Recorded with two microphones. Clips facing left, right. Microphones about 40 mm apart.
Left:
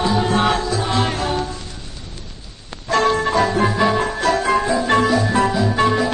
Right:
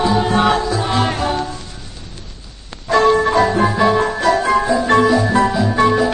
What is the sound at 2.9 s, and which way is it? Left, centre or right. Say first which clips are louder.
Music: right 4 dB; centre.